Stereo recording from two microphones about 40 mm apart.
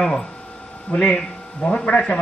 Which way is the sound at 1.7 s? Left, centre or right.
Left.